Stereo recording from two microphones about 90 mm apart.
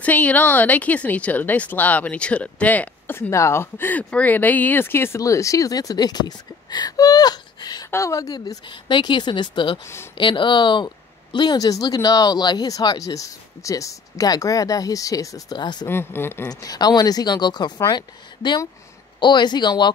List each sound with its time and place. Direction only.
0.0 s speech: 15° left (ahead or behind); by 7.9 s 50° left (ahead or behind)
7.9 s speech: 35° left (ahead or behind)
8.6 s a woman's voice: 60° left (ahead or behind)
15.9 s speech: 25° left (ahead or behind)
16.4 s a woman's voice: 45° left (ahead or behind)